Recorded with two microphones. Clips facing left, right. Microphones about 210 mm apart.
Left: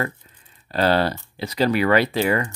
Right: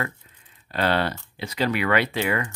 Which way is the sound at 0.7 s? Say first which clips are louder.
Left 4 dB; 35° left (ahead or behind).